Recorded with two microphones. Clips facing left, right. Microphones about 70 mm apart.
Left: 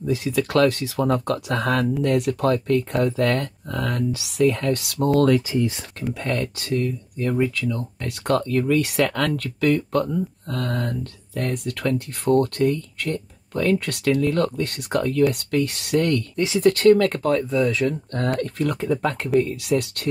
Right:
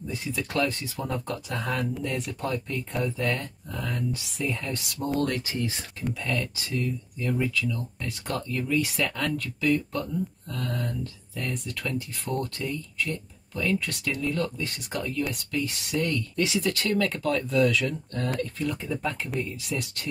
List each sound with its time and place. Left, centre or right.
0.0 s speech: left
6.2 s speech: left
16.5 s speech: left
17.5 s speech: left
18.1 s speech: left